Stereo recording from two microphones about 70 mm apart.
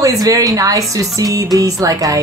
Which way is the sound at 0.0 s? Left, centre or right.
Right.